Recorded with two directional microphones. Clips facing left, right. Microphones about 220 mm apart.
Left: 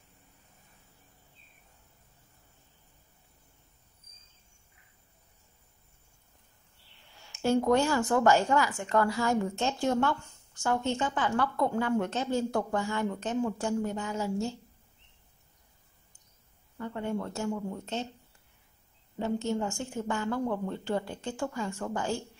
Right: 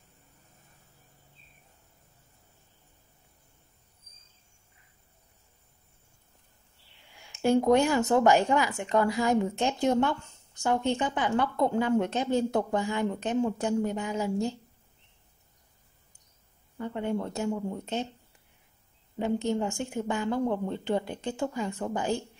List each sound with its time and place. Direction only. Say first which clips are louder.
7.2 s speech: right 3 dB; 15° right (ahead or behind)
16.7 s speech: right 3 dB; 20° right (ahead or behind)
19.1 s a woman's voice: right 2 dB; 15° right (ahead or behind)